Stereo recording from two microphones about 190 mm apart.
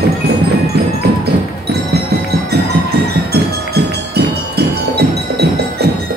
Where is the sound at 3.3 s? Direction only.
60° right (ahead or behind).